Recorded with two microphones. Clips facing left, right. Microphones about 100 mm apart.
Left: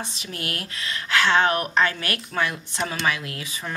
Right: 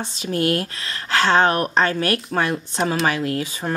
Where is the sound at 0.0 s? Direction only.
35° right (ahead or behind).